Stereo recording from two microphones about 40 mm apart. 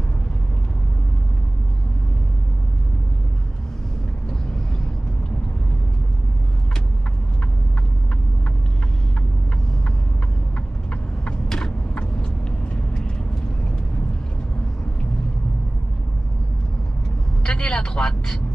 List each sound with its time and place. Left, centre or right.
11.4 s vehicle: centre
17.4 s vehicle: left